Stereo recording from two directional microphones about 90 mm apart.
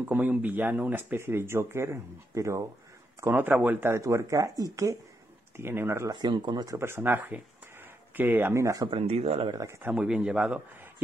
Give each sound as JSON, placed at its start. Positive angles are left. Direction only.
{"t": 0.1, "sound": "speech", "side_deg": -20}
{"t": 3.2, "sound": "speech", "side_deg": -25}
{"t": 3.9, "sound": "speech", "side_deg": -35}
{"t": 5.6, "sound": "speech", "side_deg": -25}
{"t": 6.1, "sound": "speech", "side_deg": -55}
{"t": 6.8, "sound": "speech", "side_deg": -25}
{"t": 8.8, "sound": "speech", "side_deg": -80}
{"t": 9.5, "sound": "speech", "side_deg": -40}
{"t": 9.8, "sound": "speech", "side_deg": -20}
{"t": 10.0, "sound": "a man's voice", "side_deg": -5}